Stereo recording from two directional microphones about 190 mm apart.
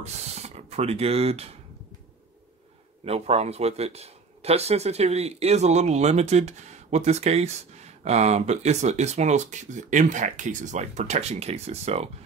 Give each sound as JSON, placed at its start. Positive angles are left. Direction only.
{"t": 0.0, "sound": "speech", "side_deg": -35}
{"t": 3.1, "sound": "speech", "side_deg": -35}